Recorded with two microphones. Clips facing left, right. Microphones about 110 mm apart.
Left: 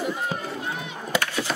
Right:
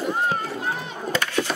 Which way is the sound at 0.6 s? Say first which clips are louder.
Right 3 dB; 35° right (ahead or behind).